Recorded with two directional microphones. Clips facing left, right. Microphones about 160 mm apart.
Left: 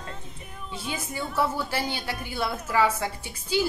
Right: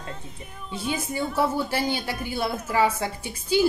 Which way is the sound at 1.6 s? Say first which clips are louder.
Right 3 dB; 15° right (ahead or behind).